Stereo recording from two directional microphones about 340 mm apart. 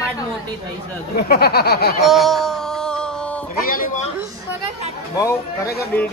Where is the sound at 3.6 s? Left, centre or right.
Left.